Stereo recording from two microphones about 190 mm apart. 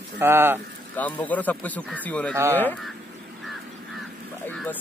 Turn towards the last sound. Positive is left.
turn(degrees=10)  # may be behind; listen again after turning